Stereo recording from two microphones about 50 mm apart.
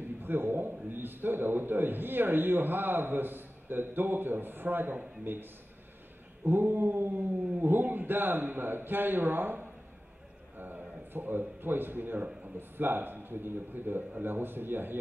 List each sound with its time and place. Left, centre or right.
0.2 s a man's voice: right